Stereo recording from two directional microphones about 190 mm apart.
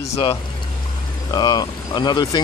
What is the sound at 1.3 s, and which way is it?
Speech, 20° left (ahead or behind).